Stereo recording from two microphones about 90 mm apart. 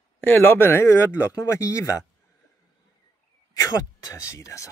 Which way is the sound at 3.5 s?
40° left (ahead or behind).